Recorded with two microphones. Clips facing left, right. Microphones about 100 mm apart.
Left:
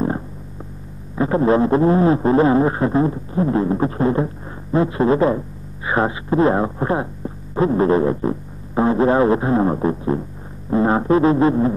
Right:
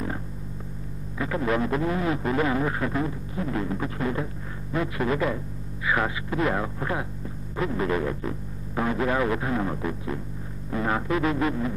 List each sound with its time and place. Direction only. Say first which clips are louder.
1.1 s speech: left 10 dB; 35° left (ahead or behind)